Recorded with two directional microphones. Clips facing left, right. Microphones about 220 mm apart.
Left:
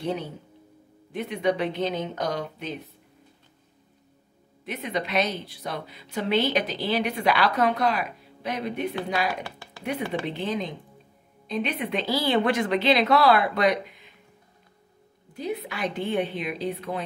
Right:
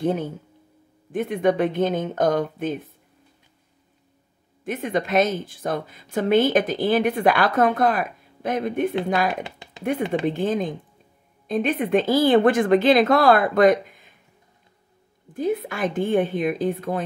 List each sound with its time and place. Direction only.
0.0 s a woman's voice: 50° right (ahead or behind)
4.6 s a woman's voice: 50° right (ahead or behind)
9.3 s speech: 20° right (ahead or behind)
10.2 s a woman's voice: 50° right (ahead or behind)
15.3 s a woman's voice: 50° right (ahead or behind)